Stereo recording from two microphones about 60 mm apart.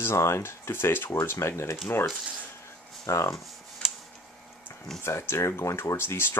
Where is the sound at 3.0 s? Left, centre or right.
Left.